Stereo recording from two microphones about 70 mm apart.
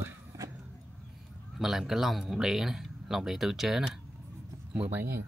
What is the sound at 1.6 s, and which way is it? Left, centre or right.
Speech, centre.